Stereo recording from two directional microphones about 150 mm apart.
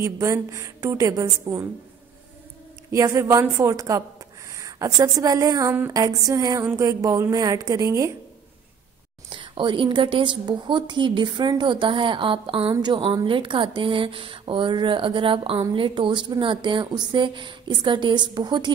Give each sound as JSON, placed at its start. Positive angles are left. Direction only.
{"t": 0.0, "sound": "speech", "side_deg": -20}
{"t": 2.9, "sound": "speech", "side_deg": -20}
{"t": 9.3, "sound": "a woman's voice", "side_deg": -35}